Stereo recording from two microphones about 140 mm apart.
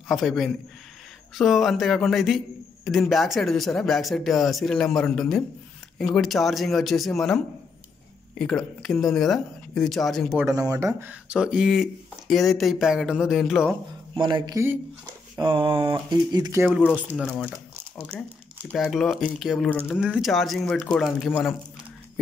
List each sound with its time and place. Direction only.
0.1 s a man's voice: centre (ahead or behind)
10.5 s speech: 25° right (ahead or behind)
11.3 s a man's voice: 5° right (ahead or behind)
14.1 s speech: 30° right (ahead or behind)
16.7 s speech: 10° right (ahead or behind)
17.2 s speech: 10° left (ahead or behind)
18.7 s a man's voice: centre (ahead or behind)